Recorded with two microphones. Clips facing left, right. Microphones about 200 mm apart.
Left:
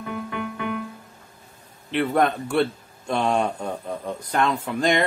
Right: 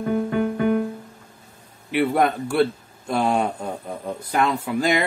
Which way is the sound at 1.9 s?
10° right (ahead or behind).